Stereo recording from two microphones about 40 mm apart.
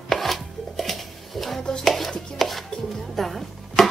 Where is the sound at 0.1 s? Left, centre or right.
Centre.